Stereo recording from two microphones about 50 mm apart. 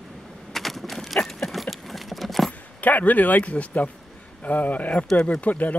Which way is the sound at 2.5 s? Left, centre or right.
Left.